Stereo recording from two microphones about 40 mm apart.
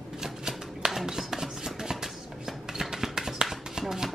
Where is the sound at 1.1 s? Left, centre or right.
Centre.